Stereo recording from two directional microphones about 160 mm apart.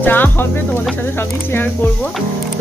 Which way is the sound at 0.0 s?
10° left (ahead or behind).